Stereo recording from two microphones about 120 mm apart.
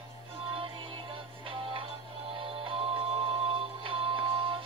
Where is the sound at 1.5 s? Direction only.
45° right (ahead or behind).